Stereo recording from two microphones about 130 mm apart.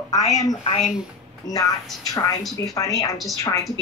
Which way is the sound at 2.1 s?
30° left (ahead or behind).